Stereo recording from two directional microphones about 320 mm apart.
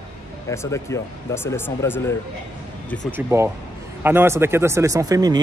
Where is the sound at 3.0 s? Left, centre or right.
Centre.